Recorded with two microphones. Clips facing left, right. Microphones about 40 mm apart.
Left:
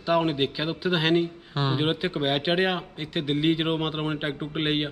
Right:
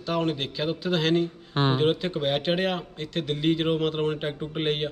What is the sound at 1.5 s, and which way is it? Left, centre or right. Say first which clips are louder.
Speech: right 3 dB; right.